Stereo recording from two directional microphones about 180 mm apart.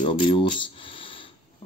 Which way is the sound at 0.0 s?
30° left (ahead or behind).